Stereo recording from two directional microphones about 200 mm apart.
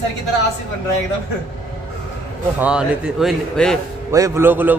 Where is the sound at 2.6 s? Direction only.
5° right (ahead or behind).